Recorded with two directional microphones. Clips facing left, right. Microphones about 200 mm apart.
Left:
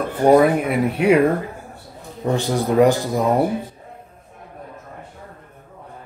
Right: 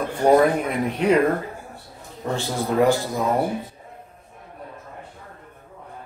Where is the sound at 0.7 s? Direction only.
10° left (ahead or behind).